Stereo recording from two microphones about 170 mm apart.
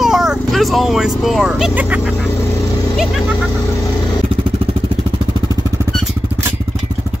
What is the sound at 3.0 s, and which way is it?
Speech, centre (ahead or behind).